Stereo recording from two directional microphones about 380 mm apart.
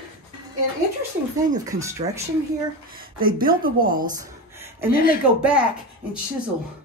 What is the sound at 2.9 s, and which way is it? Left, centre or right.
Speech, right.